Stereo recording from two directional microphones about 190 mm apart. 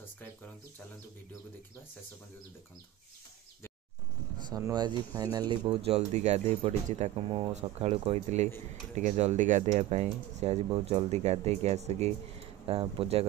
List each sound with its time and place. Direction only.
4.5 s speech: 20° right (ahead or behind)